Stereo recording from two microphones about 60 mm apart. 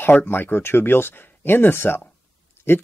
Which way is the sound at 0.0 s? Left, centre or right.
Left.